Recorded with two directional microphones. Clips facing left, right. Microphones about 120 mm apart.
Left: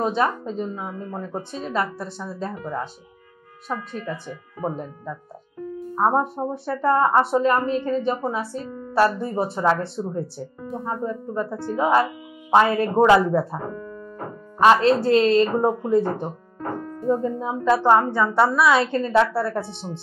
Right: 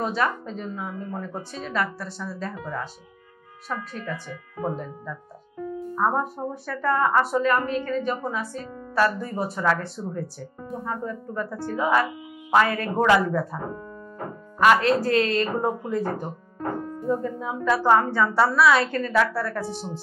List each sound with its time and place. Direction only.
0.0 s a woman's voice: 25° left (ahead or behind)
4.6 s a woman's voice: 35° left (ahead or behind)
14.6 s a woman's voice: 30° left (ahead or behind)